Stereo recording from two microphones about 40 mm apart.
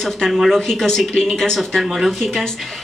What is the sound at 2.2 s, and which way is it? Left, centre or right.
Speech, centre.